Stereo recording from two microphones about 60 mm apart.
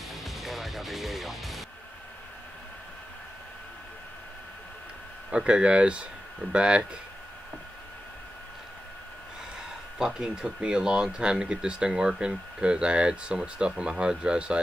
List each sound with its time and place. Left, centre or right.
0.1 s music: centre
5.3 s speech: centre
9.9 s speech: centre